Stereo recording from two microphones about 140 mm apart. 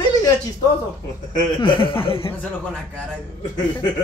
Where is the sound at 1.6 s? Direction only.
35° left (ahead or behind).